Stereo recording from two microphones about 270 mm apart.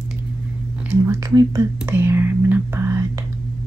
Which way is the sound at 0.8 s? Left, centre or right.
Centre.